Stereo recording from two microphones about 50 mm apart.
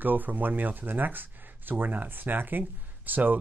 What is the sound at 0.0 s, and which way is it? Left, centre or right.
Speech, right.